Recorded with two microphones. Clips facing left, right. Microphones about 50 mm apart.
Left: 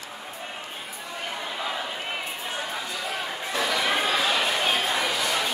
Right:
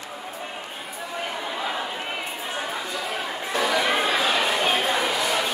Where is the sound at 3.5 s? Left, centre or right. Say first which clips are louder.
Right 3 dB; centre.